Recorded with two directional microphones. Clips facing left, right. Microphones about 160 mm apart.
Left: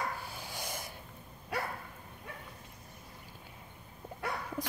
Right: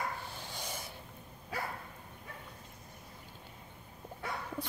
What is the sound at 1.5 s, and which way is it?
Dog, 70° left (ahead or behind).